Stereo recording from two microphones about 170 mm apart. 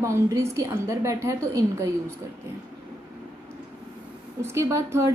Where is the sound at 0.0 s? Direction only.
15° right (ahead or behind).